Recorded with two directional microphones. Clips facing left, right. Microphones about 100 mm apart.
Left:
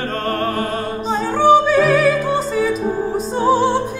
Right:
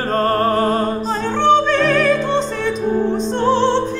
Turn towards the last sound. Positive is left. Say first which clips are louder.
# even
turn(degrees=10)  # may be behind; listen again after turning